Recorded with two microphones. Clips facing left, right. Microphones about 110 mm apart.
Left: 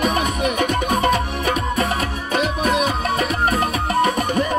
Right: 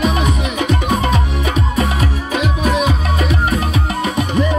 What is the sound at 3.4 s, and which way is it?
Music, 45° left (ahead or behind).